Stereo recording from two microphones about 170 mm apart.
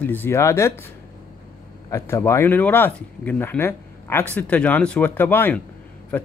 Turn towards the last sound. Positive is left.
turn(degrees=10)  # may be behind; listen again after turning